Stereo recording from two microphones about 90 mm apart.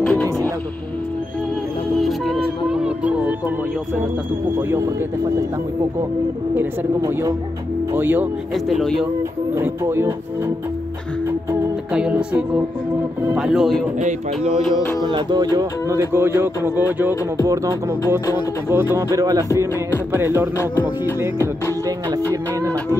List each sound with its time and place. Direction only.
0.0 s music: 10° left (ahead or behind)
2.0 s music: centre (ahead or behind); by 3.3 s 15° right (ahead or behind)
4.6 s speech: 30° right (ahead or behind)
7.9 s speech: 20° right (ahead or behind)
8.6 s speech: centre (ahead or behind)
9.6 s speech: 30° right (ahead or behind)
11.9 s music: 10° right (ahead or behind)
15.1 s speech: 50° right (ahead or behind); by 17.1 s 20° right (ahead or behind)
18.3 s speech: 25° right (ahead or behind)
19.0 s music: 40° right (ahead or behind)
20.1 s music: 25° right (ahead or behind)